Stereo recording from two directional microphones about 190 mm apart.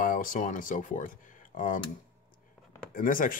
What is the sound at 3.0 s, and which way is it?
Speech, 45° left (ahead or behind).